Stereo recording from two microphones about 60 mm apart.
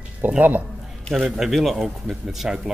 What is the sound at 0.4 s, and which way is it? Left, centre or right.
Speech, right.